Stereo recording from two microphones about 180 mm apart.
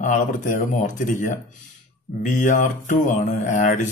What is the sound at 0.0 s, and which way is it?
Speech, 45° left (ahead or behind).